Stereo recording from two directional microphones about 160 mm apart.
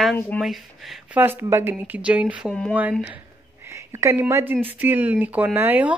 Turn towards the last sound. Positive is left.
turn(degrees=-10)  # may be behind; listen again after turning